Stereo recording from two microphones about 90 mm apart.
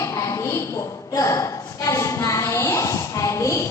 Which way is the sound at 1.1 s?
35° left (ahead or behind).